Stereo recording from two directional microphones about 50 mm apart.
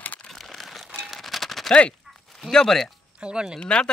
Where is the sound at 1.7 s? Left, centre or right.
Centre.